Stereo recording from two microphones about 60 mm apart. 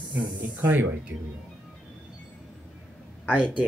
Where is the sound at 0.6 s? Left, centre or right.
Right.